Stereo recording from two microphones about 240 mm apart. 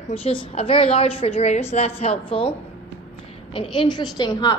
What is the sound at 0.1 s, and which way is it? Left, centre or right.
A woman's voice, left.